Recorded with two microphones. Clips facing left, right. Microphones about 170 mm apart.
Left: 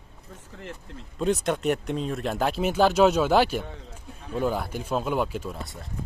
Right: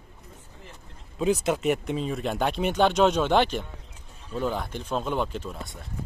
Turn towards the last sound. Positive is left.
turn(degrees=5)  # may be behind; listen again after turning